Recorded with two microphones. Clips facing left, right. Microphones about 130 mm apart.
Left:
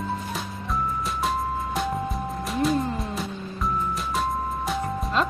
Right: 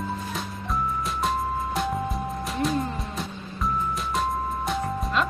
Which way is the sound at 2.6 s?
Centre (ahead or behind).